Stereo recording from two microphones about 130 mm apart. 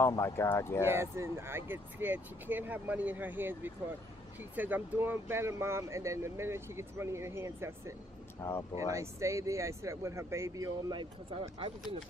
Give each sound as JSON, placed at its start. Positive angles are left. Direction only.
{"t": 0.0, "sound": "speech", "side_deg": 20}
{"t": 0.8, "sound": "speech", "side_deg": -20}
{"t": 8.4, "sound": "speech", "side_deg": 20}
{"t": 8.7, "sound": "speech", "side_deg": -25}